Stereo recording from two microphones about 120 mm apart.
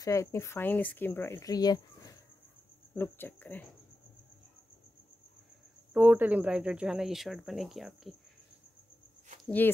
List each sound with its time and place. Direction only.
0.0 s speech: 25° left (ahead or behind)
1.5 s speech: 35° left (ahead or behind)
2.9 s speech: 15° left (ahead or behind)
5.9 s speech: 15° right (ahead or behind)